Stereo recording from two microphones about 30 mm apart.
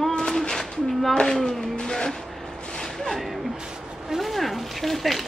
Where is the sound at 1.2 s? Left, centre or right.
Left.